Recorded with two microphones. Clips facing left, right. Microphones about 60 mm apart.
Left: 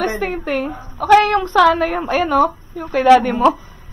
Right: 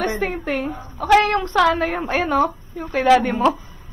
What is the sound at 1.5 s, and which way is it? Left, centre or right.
Speech, left.